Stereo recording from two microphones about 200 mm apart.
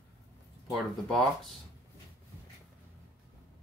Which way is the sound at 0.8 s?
Centre (ahead or behind).